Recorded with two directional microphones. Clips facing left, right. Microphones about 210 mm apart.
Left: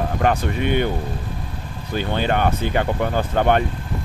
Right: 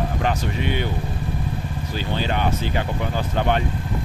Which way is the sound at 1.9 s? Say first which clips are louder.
Left 4 dB; 55° left (ahead or behind).